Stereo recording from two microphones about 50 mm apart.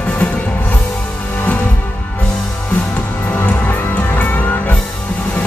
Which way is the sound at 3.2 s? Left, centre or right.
Left.